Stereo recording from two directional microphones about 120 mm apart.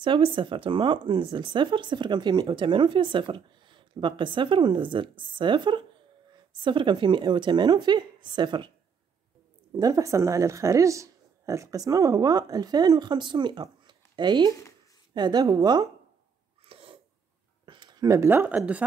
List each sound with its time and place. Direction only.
0.0 s speech: 45° right (ahead or behind)
9.7 s speech: 30° right (ahead or behind)
16.6 s sneeze: 50° right (ahead or behind)
17.6 s a sound: 40° right (ahead or behind); by 18.6 s 20° right (ahead or behind)
18.6 s a woman's voice: 10° right (ahead or behind)